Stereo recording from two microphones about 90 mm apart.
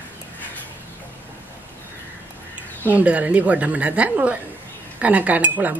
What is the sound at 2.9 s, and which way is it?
A woman's voice, 15° right (ahead or behind).